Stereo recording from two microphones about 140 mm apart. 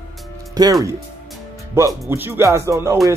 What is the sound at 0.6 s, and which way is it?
Speech, 30° right (ahead or behind).